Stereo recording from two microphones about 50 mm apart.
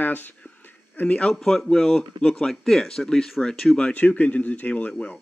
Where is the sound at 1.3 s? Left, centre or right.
Centre.